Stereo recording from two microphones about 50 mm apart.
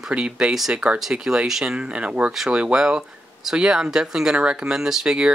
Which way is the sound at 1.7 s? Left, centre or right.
Right.